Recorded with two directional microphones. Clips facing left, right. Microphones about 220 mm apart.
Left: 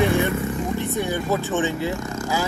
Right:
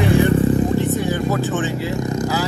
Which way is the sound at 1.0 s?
15° left (ahead or behind).